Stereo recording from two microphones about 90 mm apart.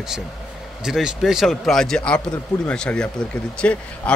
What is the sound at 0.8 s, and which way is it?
A man's voice, 5° right (ahead or behind).